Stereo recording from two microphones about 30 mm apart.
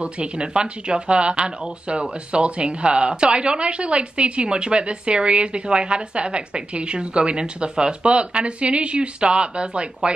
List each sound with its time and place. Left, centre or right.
0.0 s speech: right